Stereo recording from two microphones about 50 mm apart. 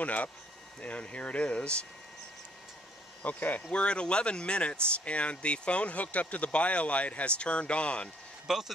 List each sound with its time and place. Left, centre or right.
0.0 s speech: left
3.2 s speech: left
3.7 s speech: left
8.5 s speech: centre